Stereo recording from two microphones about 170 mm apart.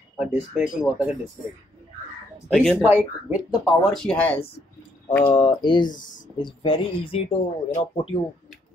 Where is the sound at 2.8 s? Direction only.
10° right (ahead or behind).